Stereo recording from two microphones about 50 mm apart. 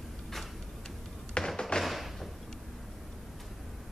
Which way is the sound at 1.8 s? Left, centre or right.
Centre.